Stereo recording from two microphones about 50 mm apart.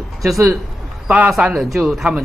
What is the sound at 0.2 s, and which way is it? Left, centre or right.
Speech, centre.